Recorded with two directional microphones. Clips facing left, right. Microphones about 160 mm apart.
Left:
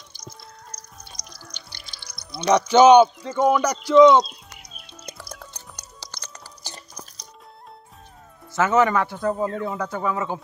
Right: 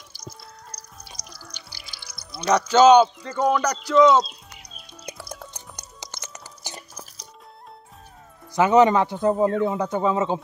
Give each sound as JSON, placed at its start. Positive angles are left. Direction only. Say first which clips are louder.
{"t": 0.1, "sound": "music", "louder": "right 2 dB", "side_deg": -5}
{"t": 2.4, "sound": "speech", "louder": "left 1 dB", "side_deg": 15}
{"t": 4.6, "sound": "music", "louder": "even", "side_deg": 5}
{"t": 5.0, "sound": "music", "louder": "right 3 dB", "side_deg": -10}
{"t": 8.5, "sound": "speech", "louder": "right 3 dB", "side_deg": -15}